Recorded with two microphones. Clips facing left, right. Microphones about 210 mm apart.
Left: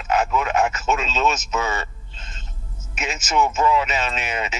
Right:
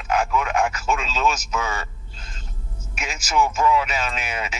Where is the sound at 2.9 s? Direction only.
10° right (ahead or behind).